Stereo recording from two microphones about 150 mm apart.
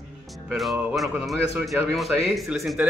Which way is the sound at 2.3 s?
Centre (ahead or behind).